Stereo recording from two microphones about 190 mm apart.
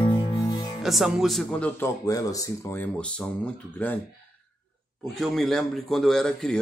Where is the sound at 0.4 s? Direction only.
20° left (ahead or behind).